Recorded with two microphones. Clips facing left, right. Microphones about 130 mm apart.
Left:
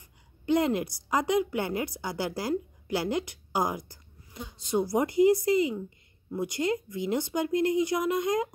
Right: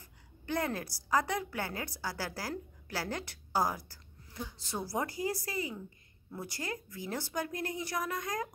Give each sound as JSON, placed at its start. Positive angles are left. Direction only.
{"t": 0.0, "sound": "a woman's voice", "side_deg": 20}